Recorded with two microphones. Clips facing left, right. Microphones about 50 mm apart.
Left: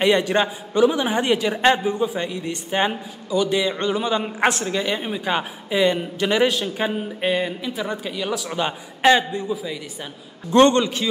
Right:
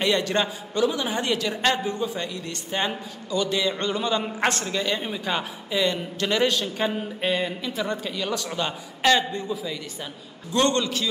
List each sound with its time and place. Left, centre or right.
0.0 s a man's voice: left
10.5 s a man's voice: left